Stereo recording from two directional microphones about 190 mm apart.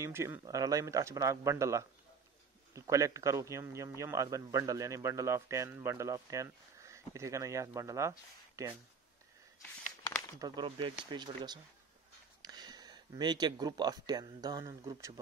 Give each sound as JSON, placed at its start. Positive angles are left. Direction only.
{"t": 0.0, "sound": "a man's voice", "side_deg": -15}
{"t": 10.4, "sound": "speech", "side_deg": -25}